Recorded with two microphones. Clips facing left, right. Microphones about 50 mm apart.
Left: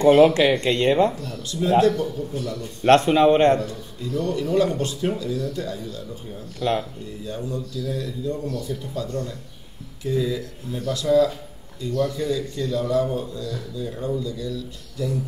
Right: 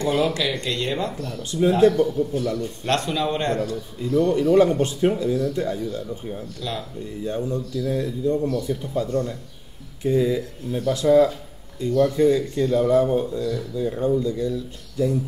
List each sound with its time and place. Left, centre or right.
0.0 s speech: left
1.2 s speech: right
2.8 s speech: left
4.0 s speech: right
6.6 s speech: left
7.2 s speech: right